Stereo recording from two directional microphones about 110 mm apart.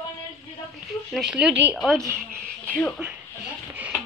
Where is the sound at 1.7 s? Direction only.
5° left (ahead or behind).